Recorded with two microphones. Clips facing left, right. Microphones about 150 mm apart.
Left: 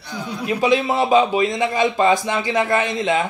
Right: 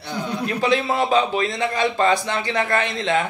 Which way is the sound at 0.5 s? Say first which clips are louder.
Left 4 dB; 15° left (ahead or behind).